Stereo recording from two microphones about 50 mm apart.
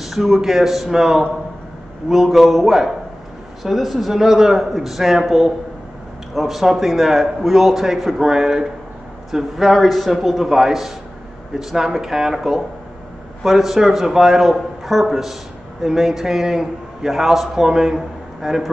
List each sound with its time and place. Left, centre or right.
0.0 s a man's voice: centre